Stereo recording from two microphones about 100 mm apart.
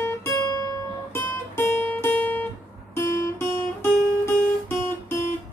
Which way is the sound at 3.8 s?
25° left (ahead or behind).